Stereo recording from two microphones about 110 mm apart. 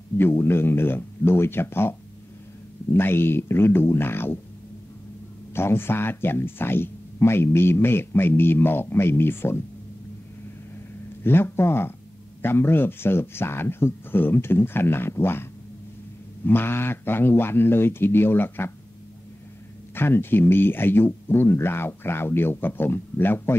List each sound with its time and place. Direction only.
0.2 s speech: 20° left (ahead or behind)
5.5 s speech: 20° left (ahead or behind)
11.2 s speech: 20° left (ahead or behind)
16.4 s speech: 20° left (ahead or behind)
19.9 s speech: 20° left (ahead or behind)